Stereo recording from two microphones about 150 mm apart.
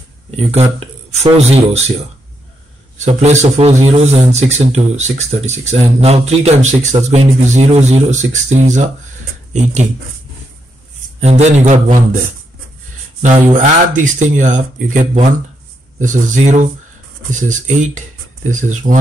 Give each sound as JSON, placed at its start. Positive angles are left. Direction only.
{"t": 0.7, "sound": "a man's voice", "side_deg": -45}
{"t": 3.0, "sound": "a man's voice", "side_deg": -50}
{"t": 11.1, "sound": "a man's voice", "side_deg": -45}
{"t": 13.2, "sound": "speech", "side_deg": -55}